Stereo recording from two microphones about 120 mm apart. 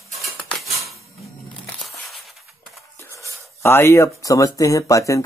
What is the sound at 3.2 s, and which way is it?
Speech, 20° left (ahead or behind).